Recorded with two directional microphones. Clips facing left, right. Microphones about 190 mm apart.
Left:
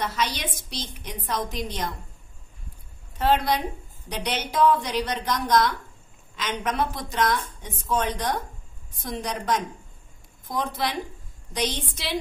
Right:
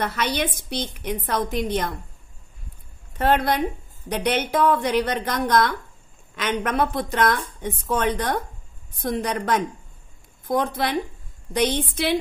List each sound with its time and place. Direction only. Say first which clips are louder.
0.0 s a woman's voice: right 4 dB; 60° right (ahead or behind)
3.2 s a woman's voice: right 2 dB; 55° right (ahead or behind)